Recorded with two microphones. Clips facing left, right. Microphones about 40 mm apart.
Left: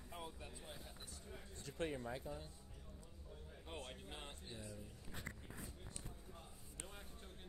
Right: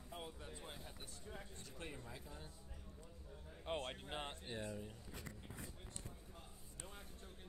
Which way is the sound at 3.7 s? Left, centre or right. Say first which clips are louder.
Right 7 dB; right.